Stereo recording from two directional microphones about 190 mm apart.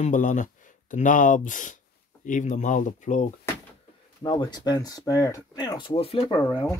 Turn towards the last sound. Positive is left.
turn(degrees=25)  # may be behind; listen again after turning